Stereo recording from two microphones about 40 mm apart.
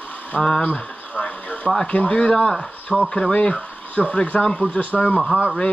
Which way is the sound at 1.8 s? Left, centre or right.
Left.